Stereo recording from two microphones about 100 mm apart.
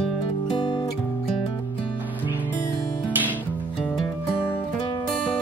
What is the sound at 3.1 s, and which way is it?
Music, 15° right (ahead or behind).